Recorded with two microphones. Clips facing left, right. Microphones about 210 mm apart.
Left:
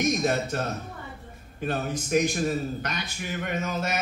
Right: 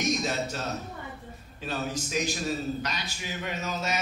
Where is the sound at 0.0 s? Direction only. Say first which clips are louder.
Left 4 dB; 55° left (ahead or behind).